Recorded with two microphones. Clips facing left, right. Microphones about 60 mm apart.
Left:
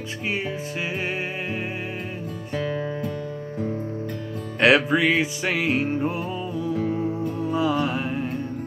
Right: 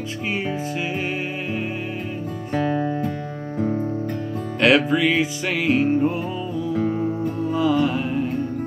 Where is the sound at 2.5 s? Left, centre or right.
Right.